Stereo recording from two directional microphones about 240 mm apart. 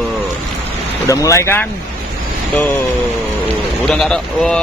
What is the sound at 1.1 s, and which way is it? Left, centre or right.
Speech, centre.